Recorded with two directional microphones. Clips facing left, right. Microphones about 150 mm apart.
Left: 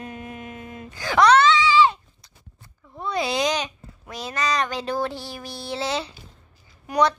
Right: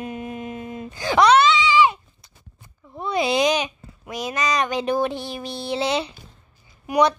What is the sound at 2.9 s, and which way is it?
A child's voice, 20° right (ahead or behind).